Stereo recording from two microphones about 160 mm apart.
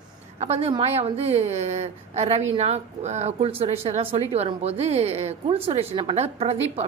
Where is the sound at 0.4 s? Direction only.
40° right (ahead or behind).